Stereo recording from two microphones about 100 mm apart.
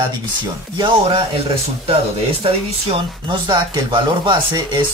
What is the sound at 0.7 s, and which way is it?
Speech, 55° right (ahead or behind).